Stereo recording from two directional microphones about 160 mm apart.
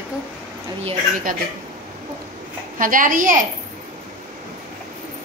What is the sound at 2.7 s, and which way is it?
Speech, 55° right (ahead or behind).